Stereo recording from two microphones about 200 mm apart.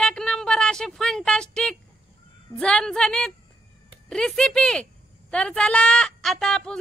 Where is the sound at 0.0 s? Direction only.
5° left (ahead or behind).